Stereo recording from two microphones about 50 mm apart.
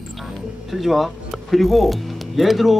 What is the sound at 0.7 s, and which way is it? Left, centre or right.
Speech, centre.